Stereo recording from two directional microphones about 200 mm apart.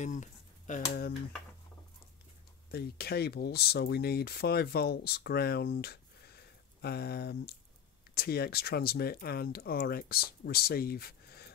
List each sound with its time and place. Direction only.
0.0 s speech: 35° left (ahead or behind)
2.7 s speech: 55° left (ahead or behind)